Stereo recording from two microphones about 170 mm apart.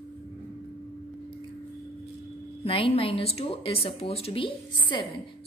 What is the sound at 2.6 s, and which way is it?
A woman's voice, 35° left (ahead or behind).